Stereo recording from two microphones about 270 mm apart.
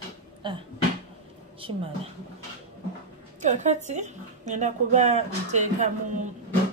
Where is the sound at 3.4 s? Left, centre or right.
Right.